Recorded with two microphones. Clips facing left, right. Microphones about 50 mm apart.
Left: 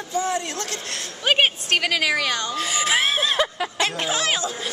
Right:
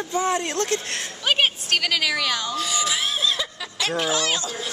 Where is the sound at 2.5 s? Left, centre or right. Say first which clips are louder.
Left 3 dB; left.